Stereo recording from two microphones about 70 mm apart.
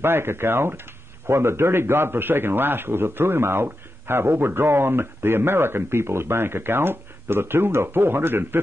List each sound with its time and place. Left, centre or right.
0.0 s a man's voice: right